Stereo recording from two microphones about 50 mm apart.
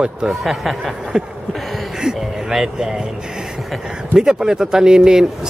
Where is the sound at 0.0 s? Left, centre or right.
Centre.